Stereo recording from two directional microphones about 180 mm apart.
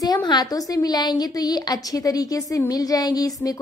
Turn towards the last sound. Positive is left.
turn(degrees=20)  # may be behind; listen again after turning